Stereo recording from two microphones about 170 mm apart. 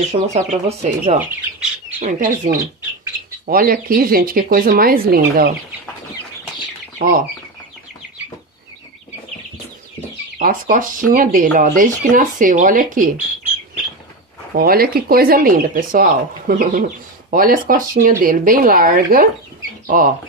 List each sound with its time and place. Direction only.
0.1 s speech: 40° right (ahead or behind)
1.2 s bird: 10° right (ahead or behind)
2.0 s speech: 55° right (ahead or behind)
10.4 s speech: 50° right (ahead or behind)
14.5 s speech: 65° right (ahead or behind)